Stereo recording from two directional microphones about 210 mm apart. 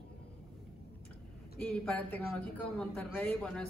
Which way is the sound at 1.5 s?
5° left (ahead or behind).